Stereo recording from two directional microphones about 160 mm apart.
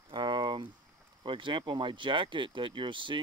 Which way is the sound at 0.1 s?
30° right (ahead or behind).